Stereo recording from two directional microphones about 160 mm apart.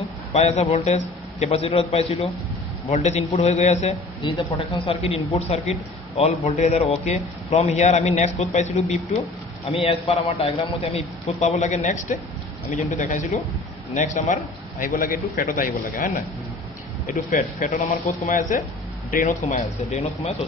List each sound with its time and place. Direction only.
0.3 s a man's voice: 40° left (ahead or behind)
19.5 s a man's voice: 45° left (ahead or behind)